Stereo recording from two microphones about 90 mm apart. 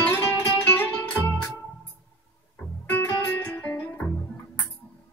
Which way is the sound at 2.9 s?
25° left (ahead or behind).